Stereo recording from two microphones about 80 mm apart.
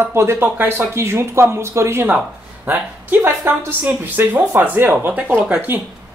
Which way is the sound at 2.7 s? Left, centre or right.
Right.